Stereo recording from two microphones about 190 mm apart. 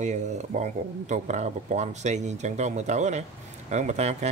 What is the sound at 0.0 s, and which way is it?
Speech, 40° right (ahead or behind).